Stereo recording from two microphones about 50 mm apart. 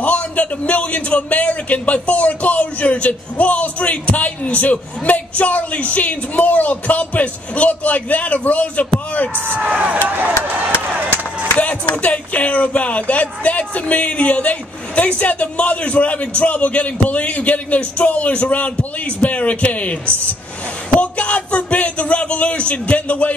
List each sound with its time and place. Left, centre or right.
0.0 s a man's voice: left
9.6 s speech: right
11.5 s a man's voice: left